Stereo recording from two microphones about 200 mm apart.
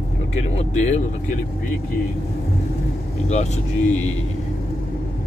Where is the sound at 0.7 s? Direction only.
35° left (ahead or behind).